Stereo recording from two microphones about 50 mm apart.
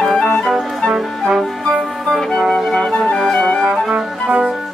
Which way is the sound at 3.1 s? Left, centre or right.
Centre.